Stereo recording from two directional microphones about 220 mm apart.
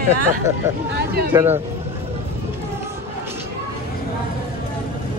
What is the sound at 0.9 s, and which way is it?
Speech, 45° right (ahead or behind).